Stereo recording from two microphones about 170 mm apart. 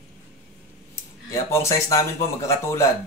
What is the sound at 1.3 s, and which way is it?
A man's voice, 15° left (ahead or behind).